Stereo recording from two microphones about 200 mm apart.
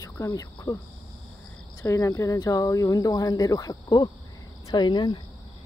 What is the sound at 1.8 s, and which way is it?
Speech, 15° left (ahead or behind).